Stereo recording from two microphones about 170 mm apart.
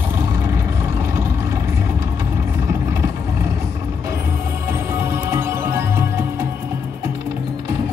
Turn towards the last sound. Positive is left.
turn(degrees=-15)  # may be behind; listen again after turning